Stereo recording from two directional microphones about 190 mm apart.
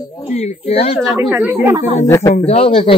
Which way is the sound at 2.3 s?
30° left (ahead or behind).